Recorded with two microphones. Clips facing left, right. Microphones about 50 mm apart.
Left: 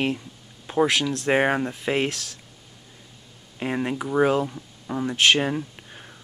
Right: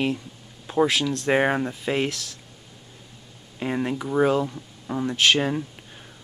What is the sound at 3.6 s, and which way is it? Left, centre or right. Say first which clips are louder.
Speech: even; centre.